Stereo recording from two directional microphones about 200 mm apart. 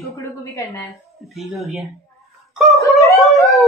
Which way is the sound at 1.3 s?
Centre (ahead or behind).